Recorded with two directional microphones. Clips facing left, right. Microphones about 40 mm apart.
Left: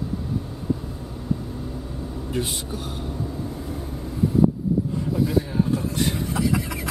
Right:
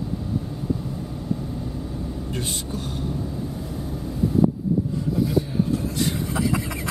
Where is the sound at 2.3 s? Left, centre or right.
Centre.